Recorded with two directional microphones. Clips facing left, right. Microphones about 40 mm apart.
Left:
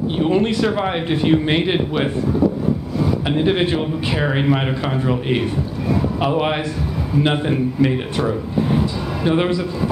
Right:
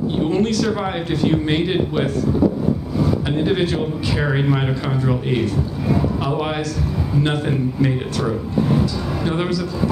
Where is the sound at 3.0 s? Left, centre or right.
Centre.